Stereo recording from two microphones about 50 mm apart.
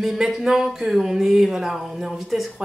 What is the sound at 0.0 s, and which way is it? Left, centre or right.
Speech, centre.